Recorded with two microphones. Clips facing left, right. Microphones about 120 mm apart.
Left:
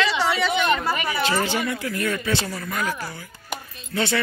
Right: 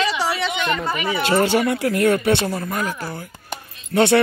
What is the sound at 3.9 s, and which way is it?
Speech, 65° right (ahead or behind).